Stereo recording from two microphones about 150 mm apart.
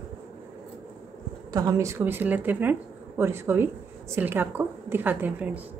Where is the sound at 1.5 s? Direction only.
20° right (ahead or behind).